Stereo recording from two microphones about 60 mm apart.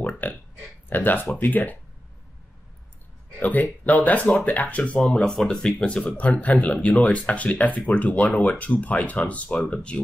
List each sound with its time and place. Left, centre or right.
0.0 s a sound: left
0.8 s speech: left
3.3 s speech: left